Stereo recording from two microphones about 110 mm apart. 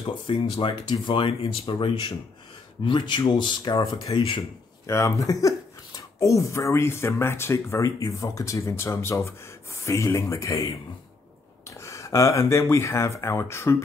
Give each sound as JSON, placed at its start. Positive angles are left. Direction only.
{"t": 0.0, "sound": "speech", "side_deg": 50}